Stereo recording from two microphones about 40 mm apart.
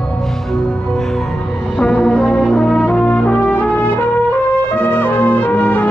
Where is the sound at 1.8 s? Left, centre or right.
Left.